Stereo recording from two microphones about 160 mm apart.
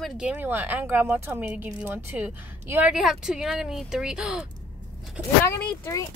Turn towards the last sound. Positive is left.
turn(degrees=10)  # may be behind; listen again after turning